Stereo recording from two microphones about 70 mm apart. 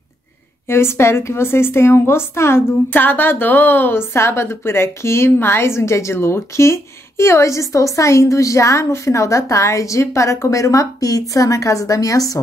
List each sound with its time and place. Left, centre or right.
0.7 s a woman's voice: left
2.9 s a woman's voice: left